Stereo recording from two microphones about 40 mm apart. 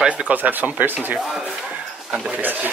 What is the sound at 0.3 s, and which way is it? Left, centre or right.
Speech, right.